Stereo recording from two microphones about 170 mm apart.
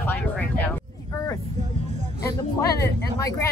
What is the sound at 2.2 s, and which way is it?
Speech, 20° left (ahead or behind).